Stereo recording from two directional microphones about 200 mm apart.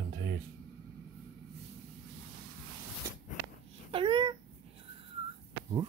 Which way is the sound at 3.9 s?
25° right (ahead or behind).